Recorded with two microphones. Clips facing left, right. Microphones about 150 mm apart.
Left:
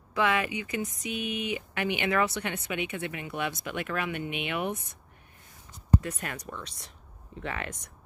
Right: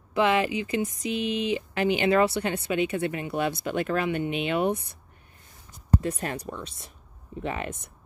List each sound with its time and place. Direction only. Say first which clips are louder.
0.1 s speech: right 4 dB; 25° right (ahead or behind)
5.9 s speech: right 4 dB; 30° right (ahead or behind)